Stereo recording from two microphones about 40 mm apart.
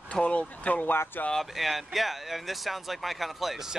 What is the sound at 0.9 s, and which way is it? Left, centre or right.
Speech, left.